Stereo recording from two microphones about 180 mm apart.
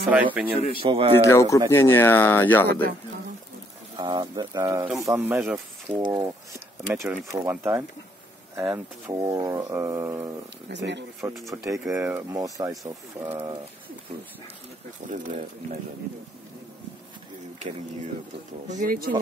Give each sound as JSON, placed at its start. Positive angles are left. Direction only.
{"t": 0.0, "sound": "speech", "side_deg": -10}
{"t": 0.7, "sound": "speech", "side_deg": -30}
{"t": 1.2, "sound": "speech", "side_deg": 15}
{"t": 4.0, "sound": "speech", "side_deg": -25}
{"t": 5.9, "sound": "speech", "side_deg": -25}
{"t": 6.9, "sound": "speech", "side_deg": -10}
{"t": 10.7, "sound": "speech", "side_deg": -75}
{"t": 11.5, "sound": "speech", "side_deg": -15}
{"t": 15.0, "sound": "speech", "side_deg": -45}
{"t": 18.7, "sound": "speech", "side_deg": -50}